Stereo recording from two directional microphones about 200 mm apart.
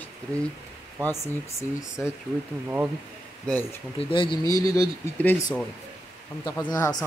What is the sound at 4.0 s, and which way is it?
Speech, 25° left (ahead or behind).